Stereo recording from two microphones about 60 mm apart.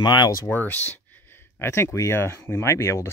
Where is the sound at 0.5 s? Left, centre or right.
Left.